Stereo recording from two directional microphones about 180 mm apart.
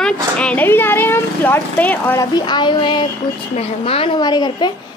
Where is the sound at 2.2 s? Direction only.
25° left (ahead or behind).